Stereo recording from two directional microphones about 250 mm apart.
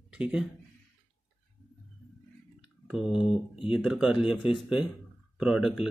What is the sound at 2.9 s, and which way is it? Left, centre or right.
Speech, centre.